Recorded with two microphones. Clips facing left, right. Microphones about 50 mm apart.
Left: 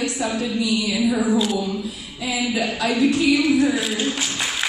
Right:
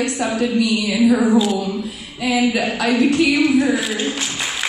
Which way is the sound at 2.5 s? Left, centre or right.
Right.